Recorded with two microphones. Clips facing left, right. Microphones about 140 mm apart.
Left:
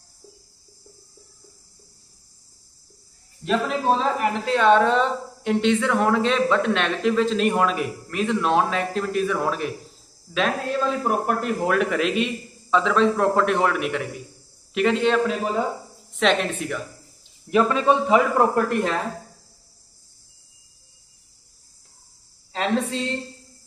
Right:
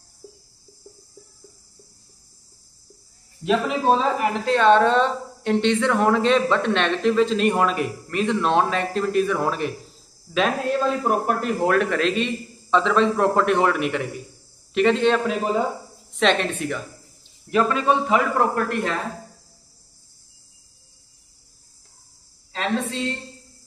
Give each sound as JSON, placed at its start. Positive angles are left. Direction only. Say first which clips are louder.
{"t": 0.2, "sound": "a sound", "louder": "right 5 dB", "side_deg": -10}
{"t": 3.4, "sound": "a woman's voice", "louder": "right 2 dB", "side_deg": -5}
{"t": 17.5, "sound": "a man's voice", "louder": "left 1 dB", "side_deg": 15}
{"t": 18.0, "sound": "a man's voice", "louder": "left 2 dB", "side_deg": 5}